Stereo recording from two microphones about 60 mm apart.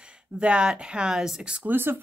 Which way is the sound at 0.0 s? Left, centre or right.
Centre.